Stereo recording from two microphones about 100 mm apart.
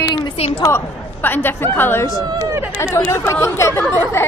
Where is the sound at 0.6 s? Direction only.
20° left (ahead or behind).